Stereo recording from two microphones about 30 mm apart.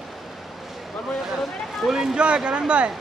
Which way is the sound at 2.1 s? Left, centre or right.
Right.